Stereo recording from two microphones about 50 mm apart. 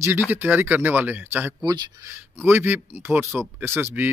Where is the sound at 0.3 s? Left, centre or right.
Right.